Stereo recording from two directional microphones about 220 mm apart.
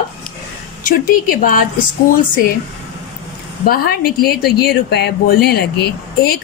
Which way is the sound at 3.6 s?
45° left (ahead or behind).